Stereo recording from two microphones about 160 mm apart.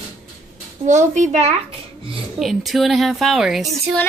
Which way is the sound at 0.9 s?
50° right (ahead or behind).